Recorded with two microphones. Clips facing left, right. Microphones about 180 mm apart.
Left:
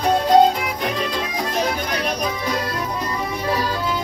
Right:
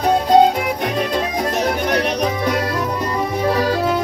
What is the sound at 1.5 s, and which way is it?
Music, 70° right (ahead or behind).